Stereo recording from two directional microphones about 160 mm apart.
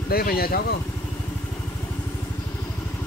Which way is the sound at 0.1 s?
70° left (ahead or behind).